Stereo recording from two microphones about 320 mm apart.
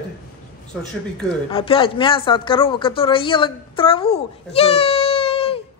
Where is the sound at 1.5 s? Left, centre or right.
Centre.